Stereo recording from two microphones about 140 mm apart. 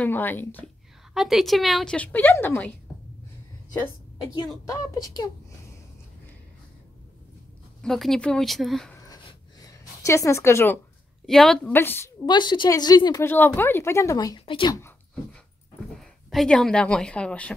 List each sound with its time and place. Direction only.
0.0 s a woman's voice: 15° left (ahead or behind)
1.1 s speech: centre (ahead or behind)
2.0 s a woman's voice: 10° left (ahead or behind)
4.6 s speech: 25° left (ahead or behind)
7.8 s speech: 5° left (ahead or behind)
8.9 s a sound: 25° left (ahead or behind)
11.2 s speech: 5° left (ahead or behind)
11.7 s a woman's voice: 15° left (ahead or behind)
12.3 s a woman's voice: 35° left (ahead or behind)
13.2 s a woman's voice: 15° left (ahead or behind)
14.4 s speech: 35° left (ahead or behind)
16.0 s speech: centre (ahead or behind)